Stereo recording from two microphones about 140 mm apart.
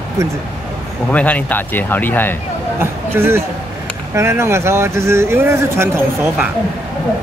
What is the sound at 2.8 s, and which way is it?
A man's voice, 15° right (ahead or behind).